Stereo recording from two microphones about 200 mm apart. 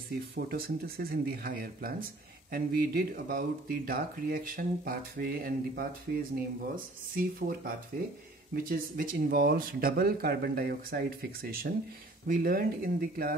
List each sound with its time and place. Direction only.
0.1 s speech: 50° right (ahead or behind)
7.2 s speech: 45° right (ahead or behind)